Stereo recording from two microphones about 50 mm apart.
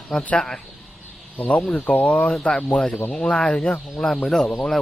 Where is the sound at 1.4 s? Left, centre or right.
Left.